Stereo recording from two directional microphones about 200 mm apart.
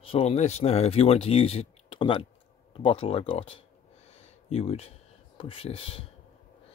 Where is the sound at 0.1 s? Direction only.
30° left (ahead or behind).